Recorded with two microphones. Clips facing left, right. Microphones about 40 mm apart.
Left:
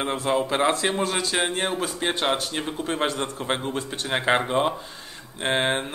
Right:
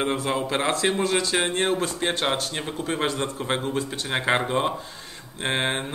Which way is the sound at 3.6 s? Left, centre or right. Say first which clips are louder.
Right 1 dB; left.